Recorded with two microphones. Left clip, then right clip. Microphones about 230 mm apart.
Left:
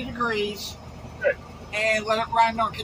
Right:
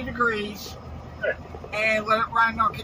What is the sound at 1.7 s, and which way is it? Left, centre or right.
Speech, right.